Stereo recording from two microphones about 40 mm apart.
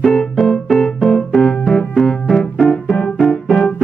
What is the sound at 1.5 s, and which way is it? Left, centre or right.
Keyboard, left.